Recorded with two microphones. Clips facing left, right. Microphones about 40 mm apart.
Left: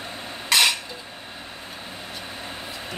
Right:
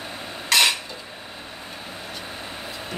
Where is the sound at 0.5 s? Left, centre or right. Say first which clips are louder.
Right 1 dB; centre.